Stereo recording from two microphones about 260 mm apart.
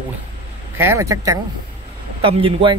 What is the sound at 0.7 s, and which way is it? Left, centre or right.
Speech, centre.